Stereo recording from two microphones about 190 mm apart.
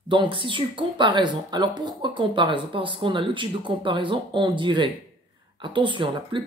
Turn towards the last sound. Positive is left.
turn(degrees=-25)  # may be behind; listen again after turning